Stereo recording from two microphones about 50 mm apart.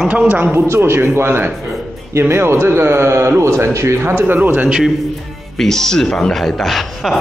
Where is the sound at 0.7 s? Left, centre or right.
Right.